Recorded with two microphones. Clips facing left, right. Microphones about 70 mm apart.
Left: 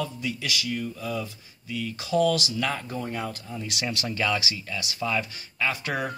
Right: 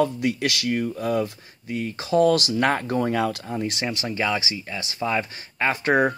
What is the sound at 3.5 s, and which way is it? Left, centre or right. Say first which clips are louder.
Speech: right 6 dB; right.